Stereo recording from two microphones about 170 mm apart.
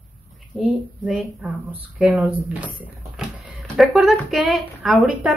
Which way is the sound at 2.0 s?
5° right (ahead or behind).